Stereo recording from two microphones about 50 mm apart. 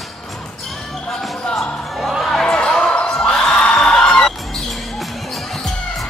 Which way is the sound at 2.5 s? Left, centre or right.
Centre.